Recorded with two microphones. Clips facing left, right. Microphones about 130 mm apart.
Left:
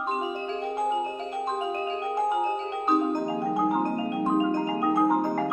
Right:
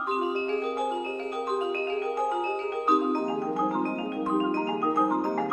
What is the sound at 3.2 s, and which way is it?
Music, 15° left (ahead or behind).